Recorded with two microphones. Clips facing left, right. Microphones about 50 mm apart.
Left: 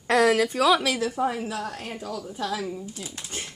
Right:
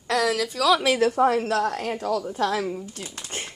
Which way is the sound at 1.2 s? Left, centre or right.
Right.